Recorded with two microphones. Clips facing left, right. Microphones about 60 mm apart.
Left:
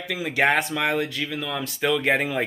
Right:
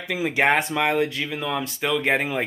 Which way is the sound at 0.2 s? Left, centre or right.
Centre.